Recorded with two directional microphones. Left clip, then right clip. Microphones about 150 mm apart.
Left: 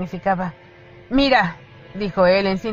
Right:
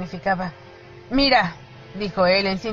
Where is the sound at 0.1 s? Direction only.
15° left (ahead or behind).